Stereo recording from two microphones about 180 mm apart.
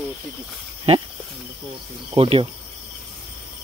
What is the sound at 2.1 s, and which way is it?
Speech, 30° right (ahead or behind).